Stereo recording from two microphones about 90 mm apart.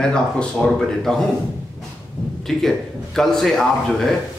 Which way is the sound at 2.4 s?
5° left (ahead or behind).